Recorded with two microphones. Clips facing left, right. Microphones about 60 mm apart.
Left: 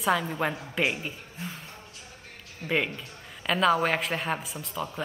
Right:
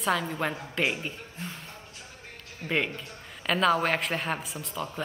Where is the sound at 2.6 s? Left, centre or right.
Centre.